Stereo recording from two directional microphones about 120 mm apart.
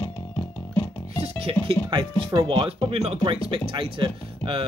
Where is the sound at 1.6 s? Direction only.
45° right (ahead or behind).